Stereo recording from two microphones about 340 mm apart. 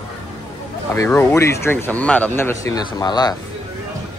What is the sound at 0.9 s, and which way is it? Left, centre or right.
Speech, centre.